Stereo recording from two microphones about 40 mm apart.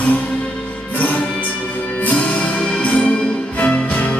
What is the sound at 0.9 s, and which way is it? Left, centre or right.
Music, left.